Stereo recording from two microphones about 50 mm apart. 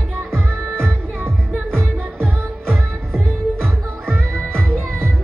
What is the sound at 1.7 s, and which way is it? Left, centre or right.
Music, centre.